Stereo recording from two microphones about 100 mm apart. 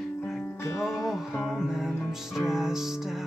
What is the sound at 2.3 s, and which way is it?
Music, 5° right (ahead or behind).